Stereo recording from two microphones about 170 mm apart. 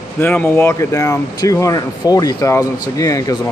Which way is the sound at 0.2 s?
10° left (ahead or behind).